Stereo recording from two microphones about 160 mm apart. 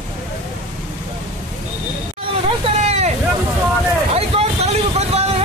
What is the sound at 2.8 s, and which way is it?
Hubbub, 40° right (ahead or behind).